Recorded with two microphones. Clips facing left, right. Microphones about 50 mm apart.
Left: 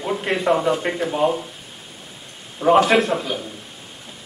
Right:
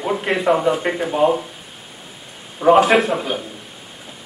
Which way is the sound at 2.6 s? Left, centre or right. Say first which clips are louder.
Right 2 dB; centre.